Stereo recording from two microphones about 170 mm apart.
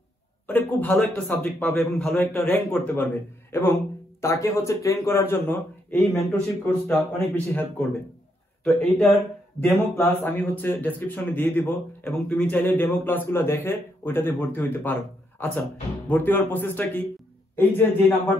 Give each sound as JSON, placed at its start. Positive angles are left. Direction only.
{"t": 0.5, "sound": "a man's voice", "side_deg": 10}
{"t": 8.6, "sound": "a man's voice", "side_deg": 10}